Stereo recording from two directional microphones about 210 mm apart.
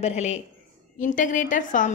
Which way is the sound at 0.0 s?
30° left (ahead or behind).